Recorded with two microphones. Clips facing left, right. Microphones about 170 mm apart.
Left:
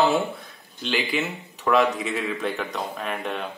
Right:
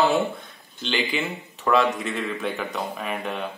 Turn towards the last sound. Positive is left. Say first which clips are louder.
# even
turn(degrees=0)  # may be behind; listen again after turning